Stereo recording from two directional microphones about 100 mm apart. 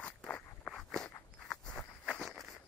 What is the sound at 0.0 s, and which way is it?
Walk, 15° left (ahead or behind).